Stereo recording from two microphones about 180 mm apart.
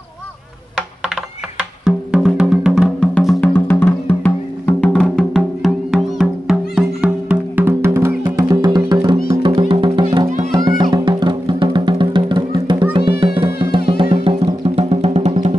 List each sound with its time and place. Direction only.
1.9 s music: centre (ahead or behind); by 10.0 s 25° right (ahead or behind)
10.2 s music: 40° right (ahead or behind)
10.5 s music: 25° right (ahead or behind)
13.8 s music: 30° right (ahead or behind)